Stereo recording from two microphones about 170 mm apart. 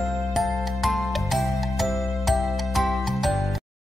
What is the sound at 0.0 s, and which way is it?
Music, centre (ahead or behind).